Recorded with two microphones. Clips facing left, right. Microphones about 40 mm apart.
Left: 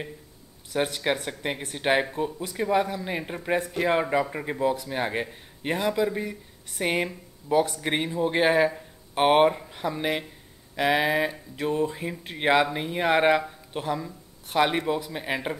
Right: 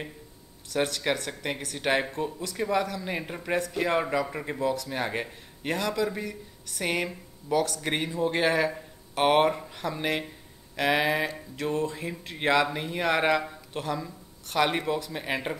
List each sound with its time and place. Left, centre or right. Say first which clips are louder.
0.7 s speech: left 1 dB; centre
1.9 s speech: left 3 dB; centre
11.5 s speech: left 2 dB; centre